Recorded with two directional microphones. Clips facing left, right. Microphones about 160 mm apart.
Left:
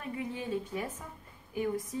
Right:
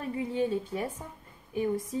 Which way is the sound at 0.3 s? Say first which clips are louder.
Right 8 dB; 30° right (ahead or behind).